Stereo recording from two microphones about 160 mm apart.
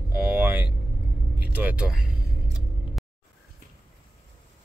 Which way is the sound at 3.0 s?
Centre (ahead or behind).